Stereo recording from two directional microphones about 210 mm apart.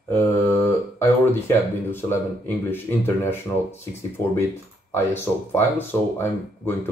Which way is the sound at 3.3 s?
10° left (ahead or behind).